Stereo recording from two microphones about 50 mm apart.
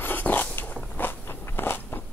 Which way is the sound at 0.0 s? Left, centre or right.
Left.